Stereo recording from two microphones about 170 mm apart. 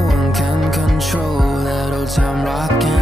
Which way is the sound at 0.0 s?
Centre (ahead or behind).